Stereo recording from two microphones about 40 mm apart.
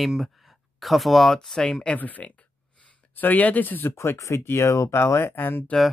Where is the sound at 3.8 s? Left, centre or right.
Left.